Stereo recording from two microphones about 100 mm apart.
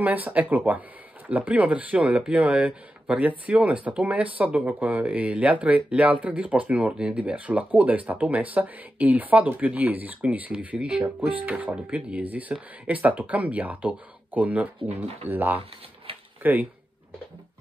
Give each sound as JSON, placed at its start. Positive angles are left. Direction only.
{"t": 0.0, "sound": "speech", "side_deg": -15}